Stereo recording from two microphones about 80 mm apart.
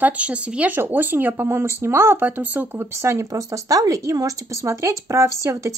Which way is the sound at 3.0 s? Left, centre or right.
Right.